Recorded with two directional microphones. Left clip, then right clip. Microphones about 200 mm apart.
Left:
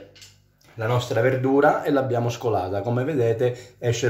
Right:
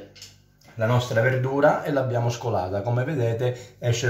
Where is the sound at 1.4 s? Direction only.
25° left (ahead or behind).